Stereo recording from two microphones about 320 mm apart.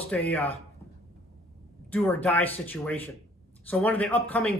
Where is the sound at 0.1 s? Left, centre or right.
Centre.